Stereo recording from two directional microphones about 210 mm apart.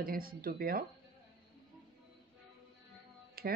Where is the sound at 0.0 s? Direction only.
45° right (ahead or behind).